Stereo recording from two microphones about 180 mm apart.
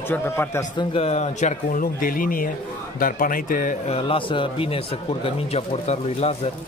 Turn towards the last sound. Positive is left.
turn(degrees=35)  # may be behind; listen again after turning